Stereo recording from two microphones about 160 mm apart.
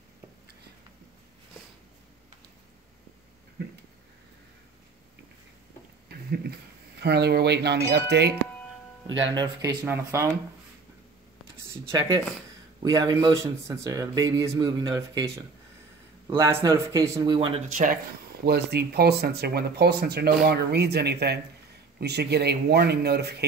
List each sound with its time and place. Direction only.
6.0 s speech: 90° right
9.8 s speech: 15° right (ahead or behind)
11.6 s a sound: 15° right (ahead or behind)
12.8 s a man's voice: 20° right (ahead or behind)
17.6 s speech: 60° right (ahead or behind)
18.4 s a man's voice: 85° right